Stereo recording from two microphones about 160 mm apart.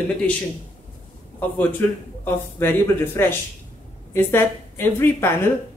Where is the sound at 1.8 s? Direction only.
15° left (ahead or behind).